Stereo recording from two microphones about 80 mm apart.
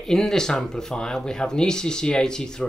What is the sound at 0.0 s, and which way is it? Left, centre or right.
Speech, centre.